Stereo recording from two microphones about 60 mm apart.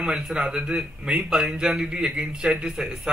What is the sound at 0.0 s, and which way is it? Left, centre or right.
A man's voice, centre.